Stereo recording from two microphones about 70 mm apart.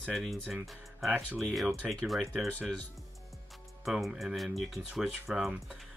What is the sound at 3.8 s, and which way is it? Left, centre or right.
Speech, centre.